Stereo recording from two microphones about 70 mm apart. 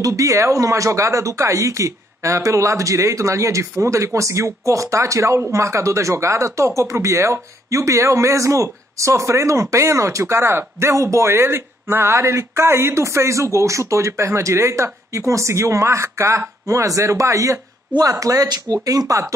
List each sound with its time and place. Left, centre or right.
0.0 s speech: right